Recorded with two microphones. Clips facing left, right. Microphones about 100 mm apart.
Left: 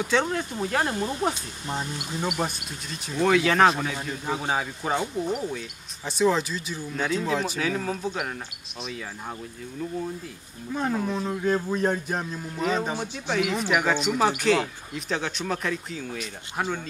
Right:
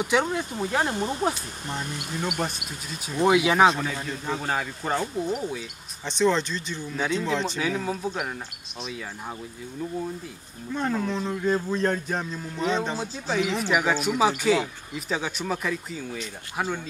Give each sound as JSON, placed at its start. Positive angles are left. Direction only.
{"t": 0.0, "sound": "speech", "side_deg": -15}
{"t": 0.9, "sound": "speech", "side_deg": -25}
{"t": 2.2, "sound": "speech", "side_deg": 0}
{"t": 3.2, "sound": "speech", "side_deg": -15}
{"t": 3.6, "sound": "speech", "side_deg": 0}
{"t": 10.7, "sound": "a man's voice", "side_deg": 10}
{"t": 13.0, "sound": "speech", "side_deg": -5}
{"t": 13.4, "sound": "speech", "side_deg": 5}
{"t": 13.7, "sound": "speech", "side_deg": -5}